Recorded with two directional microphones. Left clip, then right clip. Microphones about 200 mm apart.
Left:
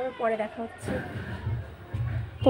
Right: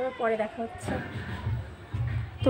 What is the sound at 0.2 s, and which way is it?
Speech, 5° right (ahead or behind).